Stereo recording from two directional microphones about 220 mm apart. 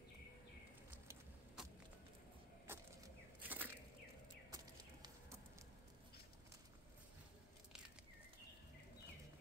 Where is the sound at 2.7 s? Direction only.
10° right (ahead or behind).